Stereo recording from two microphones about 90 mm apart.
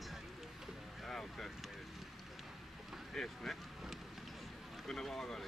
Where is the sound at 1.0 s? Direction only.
5° left (ahead or behind).